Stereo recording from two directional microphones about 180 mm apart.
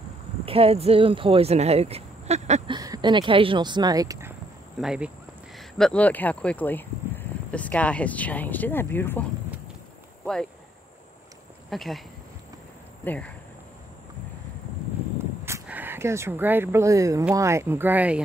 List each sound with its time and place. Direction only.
0.5 s speech: 35° right (ahead or behind)
2.7 s speech: 25° right (ahead or behind)
4.7 s speech: 5° right (ahead or behind); by 9.2 s 10° left (ahead or behind)
11.7 s speech: centre (ahead or behind)
13.0 s speech: 10° left (ahead or behind)
15.1 s a sound: 15° right (ahead or behind)
17.4 s speech: 15° right (ahead or behind)